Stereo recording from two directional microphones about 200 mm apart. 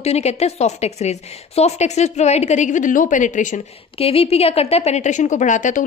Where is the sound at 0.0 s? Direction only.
35° left (ahead or behind).